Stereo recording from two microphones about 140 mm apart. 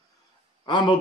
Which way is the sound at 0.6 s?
30° left (ahead or behind).